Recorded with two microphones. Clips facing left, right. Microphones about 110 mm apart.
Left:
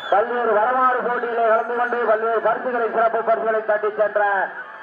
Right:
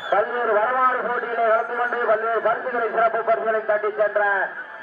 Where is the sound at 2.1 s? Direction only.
10° left (ahead or behind).